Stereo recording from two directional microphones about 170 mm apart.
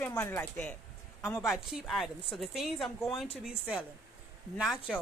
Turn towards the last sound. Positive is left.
turn(degrees=0)  # may be behind; listen again after turning